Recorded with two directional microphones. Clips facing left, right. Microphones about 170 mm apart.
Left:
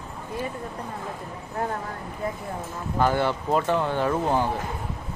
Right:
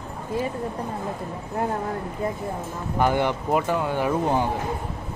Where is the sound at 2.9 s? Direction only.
15° right (ahead or behind).